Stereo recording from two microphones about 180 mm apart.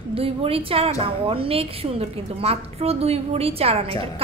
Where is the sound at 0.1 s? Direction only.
30° right (ahead or behind).